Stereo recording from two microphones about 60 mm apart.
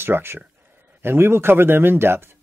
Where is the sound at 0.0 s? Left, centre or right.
Right.